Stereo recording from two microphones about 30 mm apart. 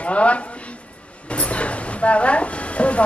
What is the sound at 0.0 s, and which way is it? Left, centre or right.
A woman's voice, left.